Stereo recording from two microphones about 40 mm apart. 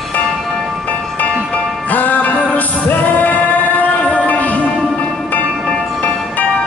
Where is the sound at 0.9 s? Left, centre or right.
Left.